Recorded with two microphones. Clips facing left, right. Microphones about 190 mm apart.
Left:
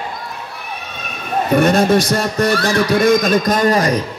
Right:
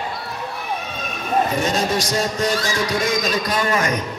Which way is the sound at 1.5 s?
60° left (ahead or behind).